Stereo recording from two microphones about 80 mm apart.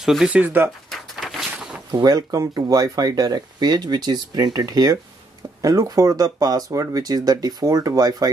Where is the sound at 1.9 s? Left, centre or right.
Right.